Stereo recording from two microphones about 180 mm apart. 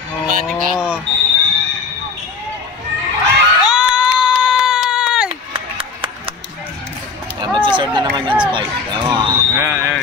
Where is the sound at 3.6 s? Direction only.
5° right (ahead or behind).